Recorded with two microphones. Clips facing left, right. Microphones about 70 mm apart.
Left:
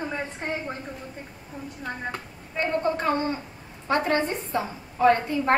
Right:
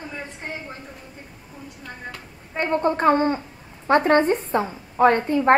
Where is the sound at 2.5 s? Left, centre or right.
Right.